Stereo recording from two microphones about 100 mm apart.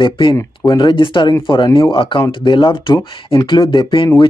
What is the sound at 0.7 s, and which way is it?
Speech, 50° left (ahead or behind).